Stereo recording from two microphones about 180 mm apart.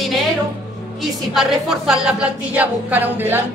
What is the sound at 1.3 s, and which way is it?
Speech, centre (ahead or behind).